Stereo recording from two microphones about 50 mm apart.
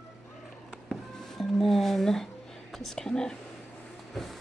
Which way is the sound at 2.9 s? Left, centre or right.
Centre.